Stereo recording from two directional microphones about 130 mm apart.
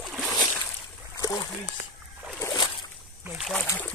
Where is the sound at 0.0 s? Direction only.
Centre (ahead or behind).